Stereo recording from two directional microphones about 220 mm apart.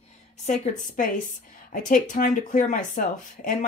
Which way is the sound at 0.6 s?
35° left (ahead or behind).